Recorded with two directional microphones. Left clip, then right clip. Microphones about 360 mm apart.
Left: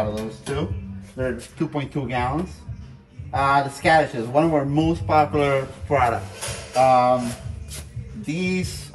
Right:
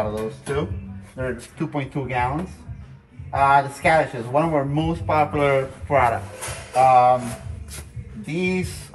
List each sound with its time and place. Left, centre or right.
0.0 s speech: centre
8.3 s speech: centre